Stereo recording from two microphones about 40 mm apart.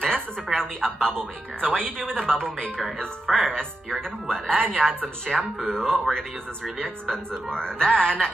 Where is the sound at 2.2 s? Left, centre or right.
Centre.